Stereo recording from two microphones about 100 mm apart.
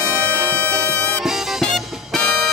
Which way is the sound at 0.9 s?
15° left (ahead or behind).